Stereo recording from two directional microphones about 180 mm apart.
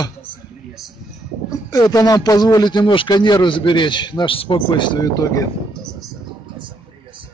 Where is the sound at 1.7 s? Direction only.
20° left (ahead or behind).